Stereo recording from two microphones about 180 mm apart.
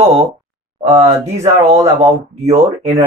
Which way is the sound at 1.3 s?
40° right (ahead or behind).